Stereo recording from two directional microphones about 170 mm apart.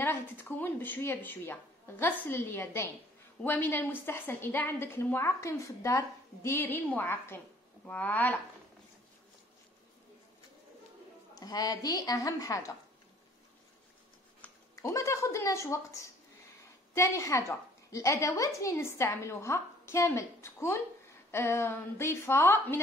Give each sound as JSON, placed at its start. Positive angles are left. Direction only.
{"t": 0.0, "sound": "a woman's voice", "side_deg": 10}
{"t": 11.3, "sound": "a woman's voice", "side_deg": 20}
{"t": 14.4, "sound": "goat", "side_deg": 10}
{"t": 14.8, "sound": "a woman's voice", "side_deg": 20}